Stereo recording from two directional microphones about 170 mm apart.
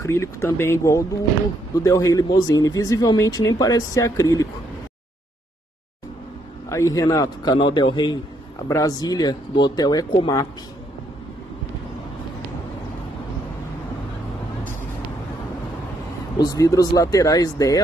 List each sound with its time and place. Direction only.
0.0 s speech: 15° left (ahead or behind)
6.7 s speech: 20° left (ahead or behind)
16.3 s speech: 20° left (ahead or behind)